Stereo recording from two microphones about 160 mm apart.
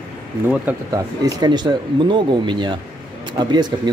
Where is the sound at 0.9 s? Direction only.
25° right (ahead or behind).